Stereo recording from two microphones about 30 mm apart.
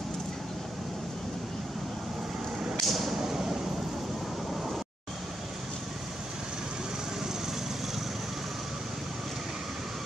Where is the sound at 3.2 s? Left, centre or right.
Centre.